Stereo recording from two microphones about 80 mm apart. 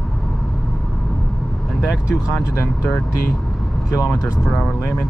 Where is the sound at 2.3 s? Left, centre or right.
Left.